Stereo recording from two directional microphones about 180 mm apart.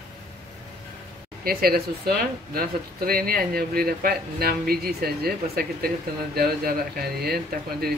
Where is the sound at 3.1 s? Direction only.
55° right (ahead or behind).